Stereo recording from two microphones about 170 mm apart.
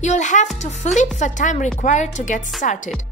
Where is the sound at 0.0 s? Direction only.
45° left (ahead or behind).